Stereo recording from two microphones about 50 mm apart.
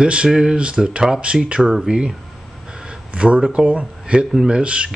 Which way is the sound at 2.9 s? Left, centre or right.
Right.